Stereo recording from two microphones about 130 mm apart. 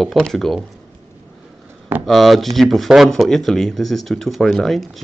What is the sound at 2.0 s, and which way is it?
Speech, centre (ahead or behind).